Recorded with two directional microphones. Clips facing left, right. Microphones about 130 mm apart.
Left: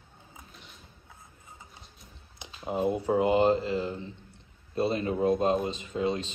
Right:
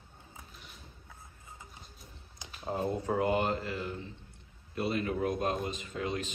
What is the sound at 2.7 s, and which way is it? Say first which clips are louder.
Speech: left 5 dB; 20° left (ahead or behind).